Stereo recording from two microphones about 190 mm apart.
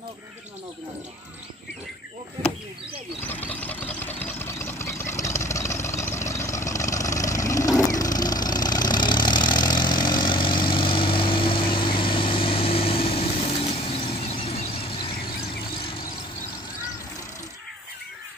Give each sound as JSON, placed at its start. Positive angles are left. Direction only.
{"t": 3.2, "sound": "engine", "side_deg": 10}
{"t": 15.7, "sound": "vehicle", "side_deg": 30}